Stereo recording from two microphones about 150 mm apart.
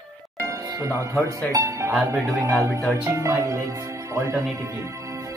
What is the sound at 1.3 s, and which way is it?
Speech, 20° right (ahead or behind).